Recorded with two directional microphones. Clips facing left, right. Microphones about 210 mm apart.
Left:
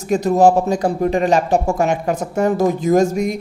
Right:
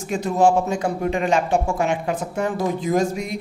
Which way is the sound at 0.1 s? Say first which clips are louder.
Left 5 dB; 40° left (ahead or behind).